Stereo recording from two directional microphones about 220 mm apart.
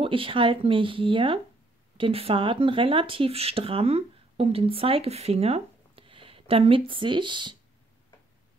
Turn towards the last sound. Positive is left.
turn(degrees=-20)  # may be behind; listen again after turning